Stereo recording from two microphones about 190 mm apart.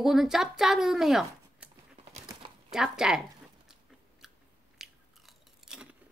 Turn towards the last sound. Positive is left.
turn(degrees=-5)  # may be behind; listen again after turning